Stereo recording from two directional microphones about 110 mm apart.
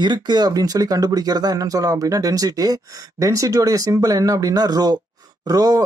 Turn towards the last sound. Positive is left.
turn(degrees=-35)  # may be behind; listen again after turning